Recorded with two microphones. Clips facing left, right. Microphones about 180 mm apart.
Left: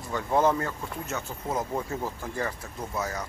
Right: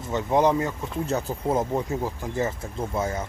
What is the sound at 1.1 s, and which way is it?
Speech, 35° right (ahead or behind).